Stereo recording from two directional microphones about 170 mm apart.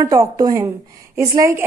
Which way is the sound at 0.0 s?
20° right (ahead or behind).